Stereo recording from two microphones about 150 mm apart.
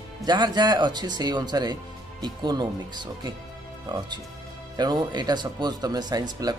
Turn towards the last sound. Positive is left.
turn(degrees=-25)  # may be behind; listen again after turning